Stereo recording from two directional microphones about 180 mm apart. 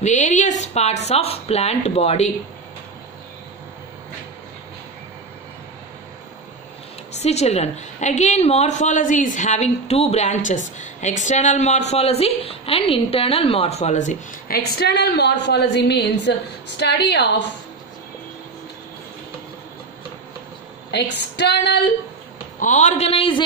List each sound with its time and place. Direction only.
0.0 s a woman's voice: 40° left (ahead or behind)
7.2 s a woman's voice: 35° left (ahead or behind)
14.8 s a woman's voice: 65° left (ahead or behind)
20.9 s a woman's voice: 70° left (ahead or behind)
22.6 s a woman's voice: 40° left (ahead or behind)